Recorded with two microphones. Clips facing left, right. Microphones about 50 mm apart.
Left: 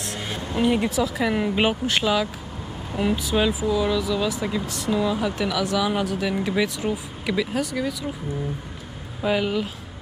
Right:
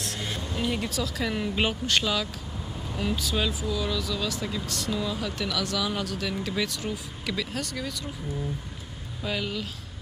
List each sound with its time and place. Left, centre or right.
0.2 s speech: centre
9.2 s speech: centre